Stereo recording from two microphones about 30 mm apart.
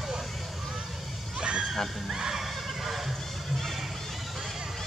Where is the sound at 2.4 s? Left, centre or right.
Centre.